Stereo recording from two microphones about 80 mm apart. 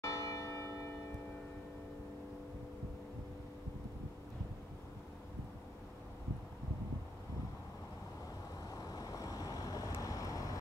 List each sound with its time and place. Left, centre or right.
0.0 s church bell: left
8.6 s vehicle: left